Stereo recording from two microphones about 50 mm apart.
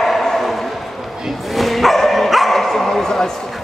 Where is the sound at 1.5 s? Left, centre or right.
Centre.